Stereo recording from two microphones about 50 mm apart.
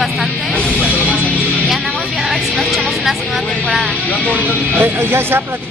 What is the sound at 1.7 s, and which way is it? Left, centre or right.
Vehicle, centre.